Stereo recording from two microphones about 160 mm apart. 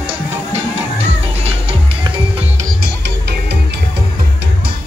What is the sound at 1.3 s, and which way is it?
Music, 40° right (ahead or behind).